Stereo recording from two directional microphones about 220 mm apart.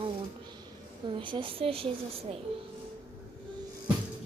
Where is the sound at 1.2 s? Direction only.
20° right (ahead or behind).